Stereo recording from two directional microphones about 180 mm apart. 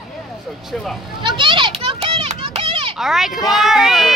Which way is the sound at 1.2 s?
25° right (ahead or behind).